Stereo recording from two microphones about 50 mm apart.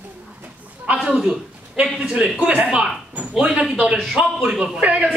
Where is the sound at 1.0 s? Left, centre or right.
Centre.